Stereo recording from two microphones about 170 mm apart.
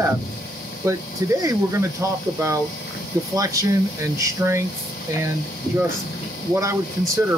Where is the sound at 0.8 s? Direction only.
20° right (ahead or behind).